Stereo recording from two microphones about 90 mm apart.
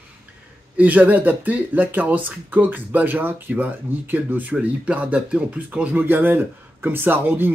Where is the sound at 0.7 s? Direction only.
15° right (ahead or behind).